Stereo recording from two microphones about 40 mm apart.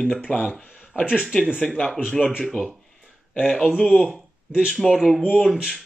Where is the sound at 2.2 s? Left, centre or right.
Centre.